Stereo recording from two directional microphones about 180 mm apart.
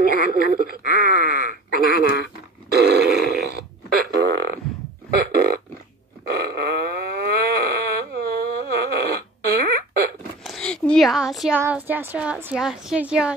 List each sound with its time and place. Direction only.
0.0 s speech: 50° right (ahead or behind)
1.0 s groan: 55° right (ahead or behind)
2.0 s speech: 60° left (ahead or behind)
2.7 s burping: 65° right (ahead or behind)
5.1 s a sound: 60° right (ahead or behind)
10.4 s a sound: 5° left (ahead or behind)
11.6 s a woman's voice: 10° right (ahead or behind)